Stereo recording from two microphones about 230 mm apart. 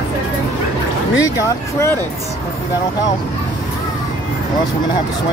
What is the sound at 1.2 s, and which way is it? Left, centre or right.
Speech, centre.